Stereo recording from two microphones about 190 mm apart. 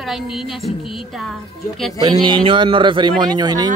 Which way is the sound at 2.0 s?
20° right (ahead or behind).